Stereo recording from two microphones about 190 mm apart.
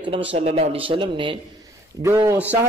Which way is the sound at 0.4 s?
30° right (ahead or behind).